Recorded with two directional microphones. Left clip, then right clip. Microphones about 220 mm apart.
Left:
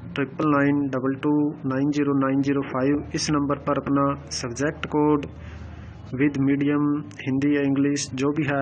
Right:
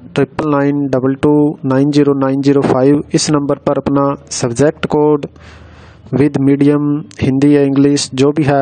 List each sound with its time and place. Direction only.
0.1 s speech: 55° right (ahead or behind)